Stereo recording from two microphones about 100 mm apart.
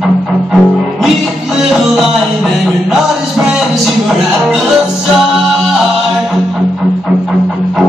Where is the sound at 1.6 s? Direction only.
5° right (ahead or behind).